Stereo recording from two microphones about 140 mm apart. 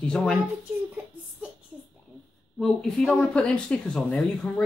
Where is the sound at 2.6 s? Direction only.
5° left (ahead or behind).